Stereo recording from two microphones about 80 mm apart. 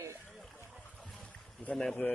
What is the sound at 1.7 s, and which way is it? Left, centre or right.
Speech, centre.